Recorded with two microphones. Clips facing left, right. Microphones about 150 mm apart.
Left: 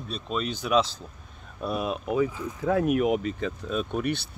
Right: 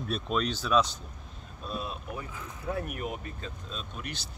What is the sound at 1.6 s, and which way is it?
Speech, 85° left.